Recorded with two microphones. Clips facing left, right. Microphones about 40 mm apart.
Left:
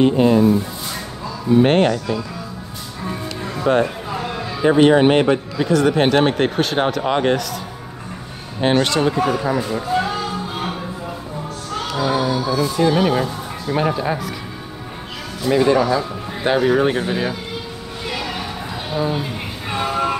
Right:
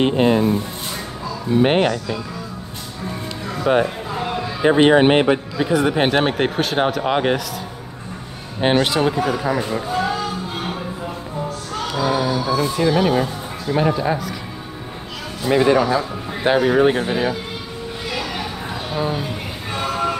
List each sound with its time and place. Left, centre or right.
0.0 s speech: right
1.5 s a man's voice: centre
3.7 s a man's voice: centre
8.5 s a man's voice: centre
12.0 s speech: centre
12.6 s speech: centre
15.4 s a man's voice: centre
15.8 s a man's voice: centre
18.9 s a man's voice: centre